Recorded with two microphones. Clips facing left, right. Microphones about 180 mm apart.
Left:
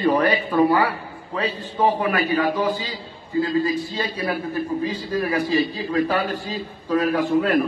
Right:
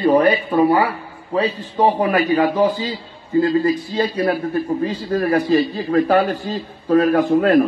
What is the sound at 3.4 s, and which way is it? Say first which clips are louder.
A man's voice: right 5 dB; 50° right (ahead or behind).